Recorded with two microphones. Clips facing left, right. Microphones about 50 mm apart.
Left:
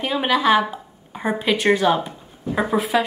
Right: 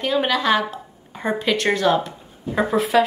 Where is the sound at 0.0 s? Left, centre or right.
Centre.